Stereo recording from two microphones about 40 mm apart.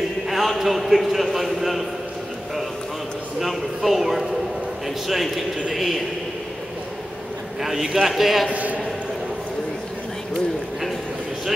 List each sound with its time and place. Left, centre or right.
0.3 s a man's voice: centre
3.3 s a sound: centre
4.8 s a man's voice: centre
7.6 s a man's voice: centre
8.5 s a man's voice: right